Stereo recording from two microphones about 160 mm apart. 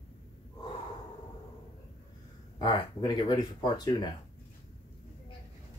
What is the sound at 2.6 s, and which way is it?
Speech, 30° left (ahead or behind).